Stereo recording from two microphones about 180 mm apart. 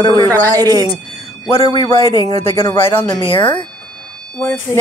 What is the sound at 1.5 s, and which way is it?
Speech, 30° left (ahead or behind).